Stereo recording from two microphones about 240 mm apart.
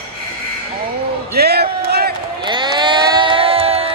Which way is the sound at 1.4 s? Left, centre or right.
Right.